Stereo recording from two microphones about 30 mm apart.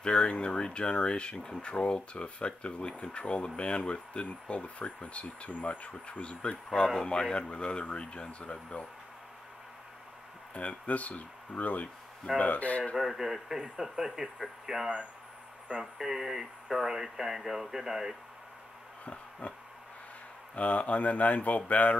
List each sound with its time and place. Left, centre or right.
0.0 s speech: left
2.2 s speech: left
6.0 s a man's voice: left
10.5 s speech: left
12.9 s speech: centre
19.4 s speech: left